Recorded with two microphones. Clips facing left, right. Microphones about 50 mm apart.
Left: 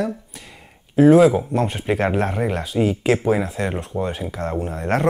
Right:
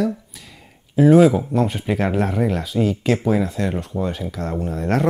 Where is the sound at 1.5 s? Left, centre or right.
Centre; by 4.9 s left.